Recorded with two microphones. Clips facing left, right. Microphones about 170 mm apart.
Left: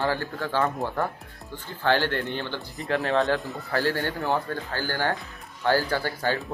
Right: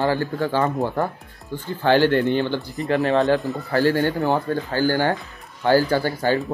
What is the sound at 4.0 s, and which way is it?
Speech, 15° right (ahead or behind).